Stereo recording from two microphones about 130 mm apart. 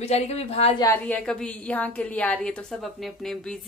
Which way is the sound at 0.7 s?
25° left (ahead or behind).